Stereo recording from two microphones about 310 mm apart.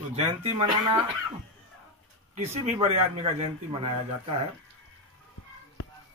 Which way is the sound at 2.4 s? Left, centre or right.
Centre.